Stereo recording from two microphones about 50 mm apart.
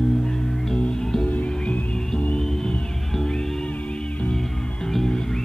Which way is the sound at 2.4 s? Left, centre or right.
Centre.